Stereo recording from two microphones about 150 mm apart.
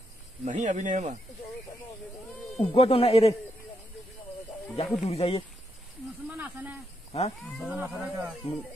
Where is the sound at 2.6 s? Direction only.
40° left (ahead or behind).